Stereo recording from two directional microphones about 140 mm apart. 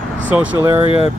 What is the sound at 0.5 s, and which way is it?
Speech, 20° right (ahead or behind).